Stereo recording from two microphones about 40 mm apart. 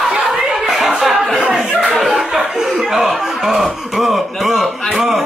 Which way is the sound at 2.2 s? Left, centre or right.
Centre.